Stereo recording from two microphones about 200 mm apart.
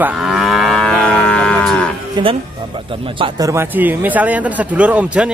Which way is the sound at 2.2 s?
20° right (ahead or behind).